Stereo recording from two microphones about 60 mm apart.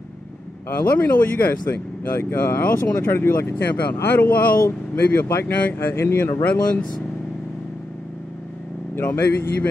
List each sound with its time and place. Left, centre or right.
0.7 s speech: left
3.0 s speech: left
4.6 s speech: left
5.5 s speech: left
5.8 s speech: left
6.4 s speech: left
8.9 s speech: left